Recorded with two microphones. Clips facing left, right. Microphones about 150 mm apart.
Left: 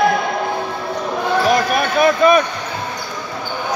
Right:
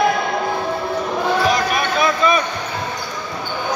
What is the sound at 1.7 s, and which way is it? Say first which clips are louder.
Basketball bounce: left 4 dB; 50° left (ahead or behind).